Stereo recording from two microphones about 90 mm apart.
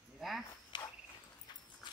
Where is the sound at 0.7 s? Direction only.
60° left (ahead or behind).